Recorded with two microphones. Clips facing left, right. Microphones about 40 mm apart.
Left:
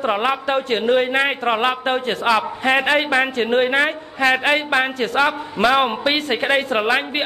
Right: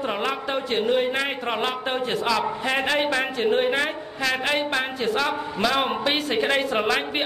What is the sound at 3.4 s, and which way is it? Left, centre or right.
Speech, left.